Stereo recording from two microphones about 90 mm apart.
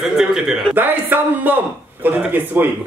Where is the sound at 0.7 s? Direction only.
20° right (ahead or behind).